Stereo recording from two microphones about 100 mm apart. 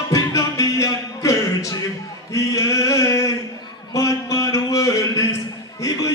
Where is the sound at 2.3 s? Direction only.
30° left (ahead or behind).